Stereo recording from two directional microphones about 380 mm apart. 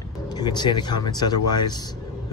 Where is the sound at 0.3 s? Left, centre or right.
Centre.